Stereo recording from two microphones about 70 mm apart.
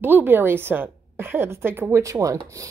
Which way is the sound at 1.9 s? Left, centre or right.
Right.